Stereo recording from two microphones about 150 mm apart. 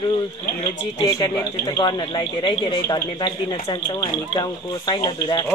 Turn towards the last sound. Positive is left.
turn(degrees=25)  # may be behind; listen again after turning